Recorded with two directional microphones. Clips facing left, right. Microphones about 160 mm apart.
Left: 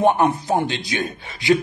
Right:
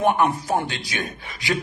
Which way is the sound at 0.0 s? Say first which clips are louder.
Left 3 dB; 20° left (ahead or behind).